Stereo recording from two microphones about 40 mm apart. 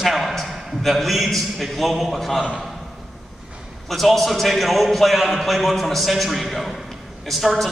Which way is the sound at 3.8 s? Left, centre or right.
Centre.